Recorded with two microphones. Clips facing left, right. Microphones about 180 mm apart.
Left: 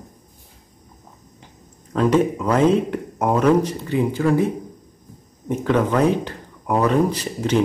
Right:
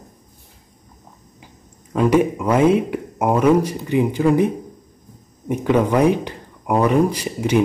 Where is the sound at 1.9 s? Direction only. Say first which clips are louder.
Right 1 dB; 10° right (ahead or behind).